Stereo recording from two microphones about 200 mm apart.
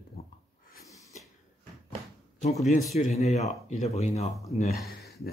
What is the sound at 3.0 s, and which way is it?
Speech, 35° left (ahead or behind).